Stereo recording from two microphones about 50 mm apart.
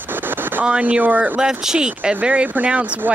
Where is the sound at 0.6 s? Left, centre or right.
Right.